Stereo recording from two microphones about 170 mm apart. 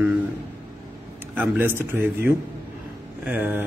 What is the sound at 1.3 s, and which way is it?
A man's voice, 10° right (ahead or behind).